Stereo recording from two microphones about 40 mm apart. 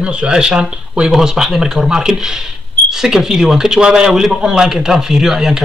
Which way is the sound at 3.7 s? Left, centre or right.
Right.